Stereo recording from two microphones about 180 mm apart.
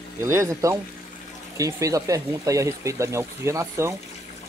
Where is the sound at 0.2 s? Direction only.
15° right (ahead or behind).